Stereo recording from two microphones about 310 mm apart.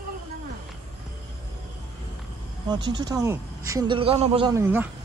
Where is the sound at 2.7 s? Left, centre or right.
Centre.